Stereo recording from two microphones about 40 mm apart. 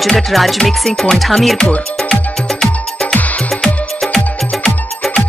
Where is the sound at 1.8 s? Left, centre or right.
Centre.